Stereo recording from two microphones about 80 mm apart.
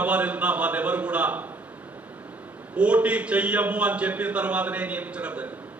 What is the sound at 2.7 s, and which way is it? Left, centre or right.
A man's voice, centre.